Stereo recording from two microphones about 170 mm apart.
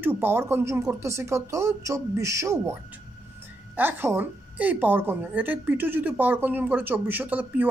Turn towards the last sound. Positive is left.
turn(degrees=-10)  # may be behind; listen again after turning